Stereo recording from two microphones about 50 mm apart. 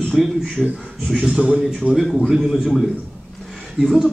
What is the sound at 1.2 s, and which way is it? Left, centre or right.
Speech, right.